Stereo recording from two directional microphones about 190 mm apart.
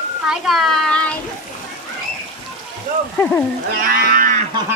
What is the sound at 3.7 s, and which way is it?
Livestock, 50° right (ahead or behind).